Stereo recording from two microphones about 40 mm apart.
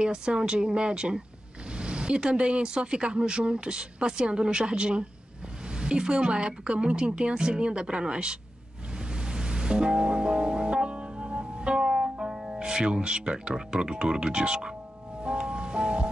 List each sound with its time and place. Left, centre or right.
0.0 s speech: right
9.3 s music: right